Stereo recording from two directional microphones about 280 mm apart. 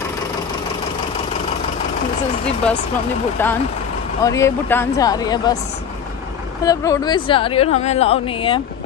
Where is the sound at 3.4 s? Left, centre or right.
Centre.